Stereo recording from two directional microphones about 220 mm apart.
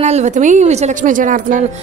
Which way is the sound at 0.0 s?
30° right (ahead or behind).